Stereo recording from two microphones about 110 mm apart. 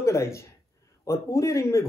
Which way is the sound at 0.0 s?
25° left (ahead or behind).